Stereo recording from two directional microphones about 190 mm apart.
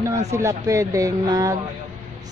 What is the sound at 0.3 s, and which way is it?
A woman's voice, 15° right (ahead or behind).